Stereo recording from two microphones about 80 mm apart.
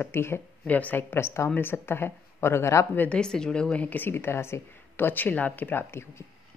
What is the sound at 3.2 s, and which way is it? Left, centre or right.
A woman's voice, centre.